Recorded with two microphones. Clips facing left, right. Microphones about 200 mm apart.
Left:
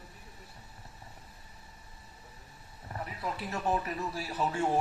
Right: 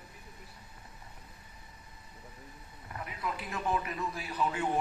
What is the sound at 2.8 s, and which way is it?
A man's voice, 35° left (ahead or behind).